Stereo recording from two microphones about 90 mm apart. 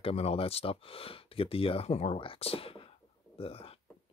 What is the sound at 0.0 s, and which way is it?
Speech, 90° left.